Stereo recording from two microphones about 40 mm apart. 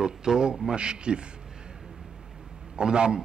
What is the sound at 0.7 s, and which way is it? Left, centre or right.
Speech, right.